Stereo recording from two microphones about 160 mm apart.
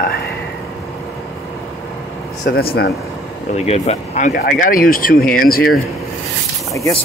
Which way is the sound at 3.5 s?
40° left (ahead or behind).